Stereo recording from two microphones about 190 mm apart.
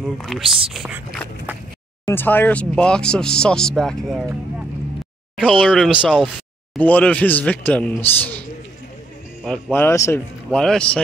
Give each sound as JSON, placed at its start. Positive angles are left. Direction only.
{"t": 0.0, "sound": "speech", "side_deg": 0}
{"t": 2.0, "sound": "speech", "side_deg": 10}
{"t": 6.8, "sound": "a man's voice", "side_deg": 10}
{"t": 9.4, "sound": "a man's voice", "side_deg": 5}
{"t": 10.5, "sound": "speech", "side_deg": 5}